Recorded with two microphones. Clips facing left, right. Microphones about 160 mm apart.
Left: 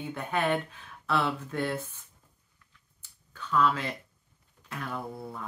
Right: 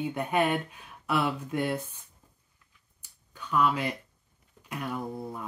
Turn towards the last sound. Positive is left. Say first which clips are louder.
# right 2 dB
turn(degrees=-15)  # may be behind; listen again after turning